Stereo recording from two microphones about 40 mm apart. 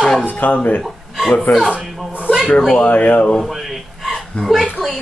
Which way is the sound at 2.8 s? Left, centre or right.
Left.